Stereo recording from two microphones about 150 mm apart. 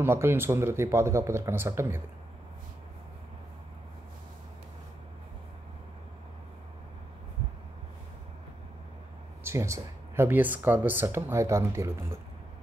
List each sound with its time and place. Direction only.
0.0 s speech: 15° right (ahead or behind)
9.4 s speech: 20° right (ahead or behind)